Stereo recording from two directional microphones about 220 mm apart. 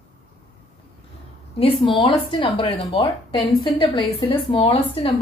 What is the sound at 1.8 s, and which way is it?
A woman's voice, 20° left (ahead or behind).